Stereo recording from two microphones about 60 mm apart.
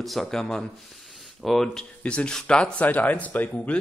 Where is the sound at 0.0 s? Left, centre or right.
Centre; by 3.8 s left.